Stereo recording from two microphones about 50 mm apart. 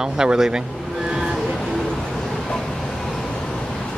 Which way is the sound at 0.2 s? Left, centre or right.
Centre.